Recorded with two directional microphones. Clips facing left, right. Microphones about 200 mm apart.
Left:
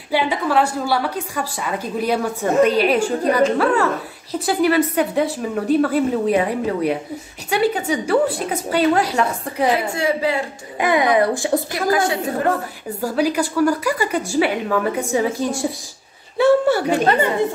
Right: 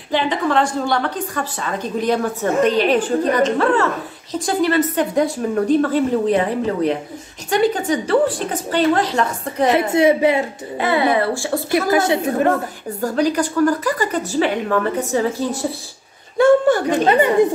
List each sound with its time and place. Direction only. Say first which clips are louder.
0.1 s a woman's voice: right 1 dB; 10° left (ahead or behind)
9.7 s a woman's voice: right 6 dB; 20° right (ahead or behind)
10.8 s a woman's voice: left 1 dB; 15° left (ahead or behind)
11.9 s a woman's voice: even; 20° right (ahead or behind)
13.0 s a woman's voice: right 1 dB; 10° left (ahead or behind)
17.0 s a woman's voice: right 2 dB; 15° right (ahead or behind)